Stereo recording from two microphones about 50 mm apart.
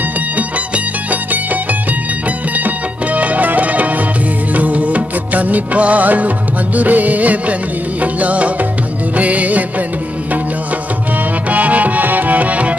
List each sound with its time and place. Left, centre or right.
0.4 s music: right
4.6 s music of bollywood: right
8.0 s music: right
11.4 s music: right